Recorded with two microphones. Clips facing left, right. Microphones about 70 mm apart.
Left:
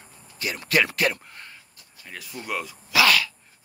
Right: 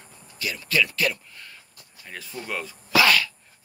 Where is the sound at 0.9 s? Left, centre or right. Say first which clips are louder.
Left 2 dB; left.